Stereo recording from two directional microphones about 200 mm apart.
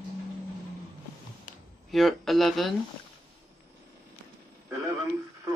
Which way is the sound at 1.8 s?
Centre (ahead or behind).